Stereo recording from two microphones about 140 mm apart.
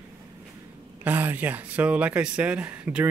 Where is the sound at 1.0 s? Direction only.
15° right (ahead or behind).